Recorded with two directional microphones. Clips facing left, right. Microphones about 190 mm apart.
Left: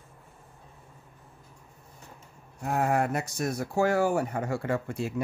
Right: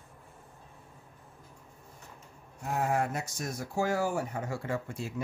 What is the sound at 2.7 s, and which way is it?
Speech, 65° left (ahead or behind).